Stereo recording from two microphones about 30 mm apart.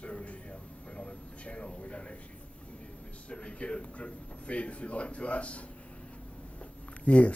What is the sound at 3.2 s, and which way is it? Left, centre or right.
Speech, left.